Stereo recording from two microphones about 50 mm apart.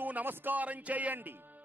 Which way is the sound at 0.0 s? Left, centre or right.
Right.